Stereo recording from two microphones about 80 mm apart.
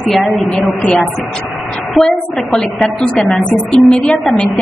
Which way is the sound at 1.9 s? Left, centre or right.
Centre.